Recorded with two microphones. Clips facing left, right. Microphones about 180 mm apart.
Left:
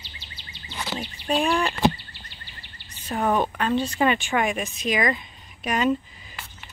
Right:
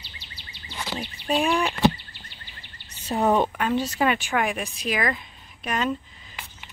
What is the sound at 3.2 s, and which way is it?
Speech, 10° right (ahead or behind).